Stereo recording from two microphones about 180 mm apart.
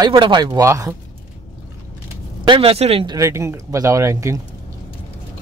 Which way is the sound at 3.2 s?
15° right (ahead or behind).